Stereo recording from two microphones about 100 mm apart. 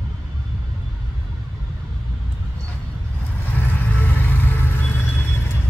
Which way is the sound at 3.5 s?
20° left (ahead or behind).